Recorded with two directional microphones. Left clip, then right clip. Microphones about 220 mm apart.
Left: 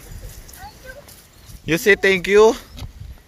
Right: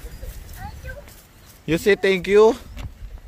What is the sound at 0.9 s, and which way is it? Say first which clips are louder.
Clip-clop: even; 5° left (ahead or behind).